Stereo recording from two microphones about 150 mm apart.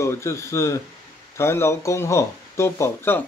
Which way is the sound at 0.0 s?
20° left (ahead or behind).